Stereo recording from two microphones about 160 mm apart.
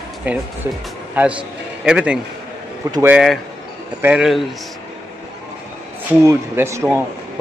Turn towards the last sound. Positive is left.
turn(degrees=-20)  # may be behind; listen again after turning